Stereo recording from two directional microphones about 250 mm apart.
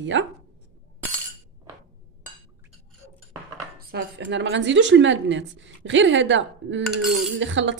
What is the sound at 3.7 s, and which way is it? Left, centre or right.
A woman's voice, right.